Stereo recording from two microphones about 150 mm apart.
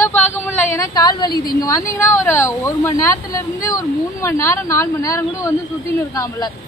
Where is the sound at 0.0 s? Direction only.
15° left (ahead or behind).